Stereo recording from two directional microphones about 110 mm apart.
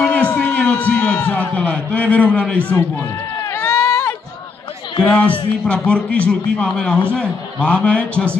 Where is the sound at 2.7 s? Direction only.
25° left (ahead or behind).